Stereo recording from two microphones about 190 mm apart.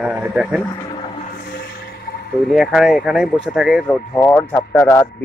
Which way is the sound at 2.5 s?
Centre (ahead or behind).